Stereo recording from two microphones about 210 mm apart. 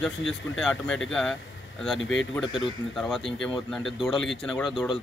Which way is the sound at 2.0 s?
65° left (ahead or behind).